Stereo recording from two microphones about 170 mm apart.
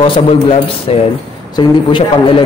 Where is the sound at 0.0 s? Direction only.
35° left (ahead or behind).